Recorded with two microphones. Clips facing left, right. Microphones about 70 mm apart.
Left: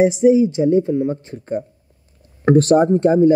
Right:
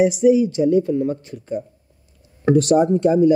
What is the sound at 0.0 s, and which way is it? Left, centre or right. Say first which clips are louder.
Speech: left 2 dB; left.